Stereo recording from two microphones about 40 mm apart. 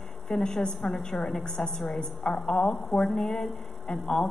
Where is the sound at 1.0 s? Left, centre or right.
Centre.